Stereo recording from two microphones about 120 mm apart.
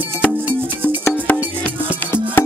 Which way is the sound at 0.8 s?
15° left (ahead or behind).